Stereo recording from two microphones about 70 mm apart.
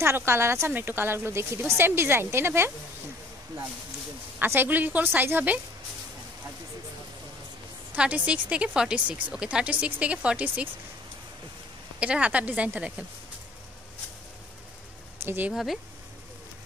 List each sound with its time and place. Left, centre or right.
0.0 s speech: right
0.7 s speech: right
4.6 s a woman's voice: right
7.9 s speech: centre
12.0 s a woman's voice: centre
15.2 s a woman's voice: right
15.5 s speech: centre